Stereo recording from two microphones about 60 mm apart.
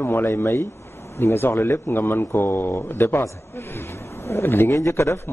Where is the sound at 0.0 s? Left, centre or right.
Left.